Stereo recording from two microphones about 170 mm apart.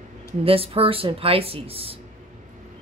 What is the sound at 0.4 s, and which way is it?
Speech, 35° right (ahead or behind).